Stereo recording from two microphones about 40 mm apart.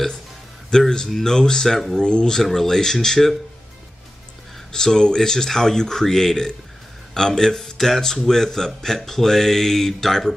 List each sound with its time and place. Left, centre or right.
0.7 s a man's voice: centre
2.4 s a man's voice: centre
4.7 s a man's voice: centre